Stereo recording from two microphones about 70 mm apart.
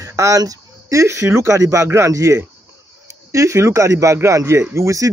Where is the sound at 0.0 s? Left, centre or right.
Right.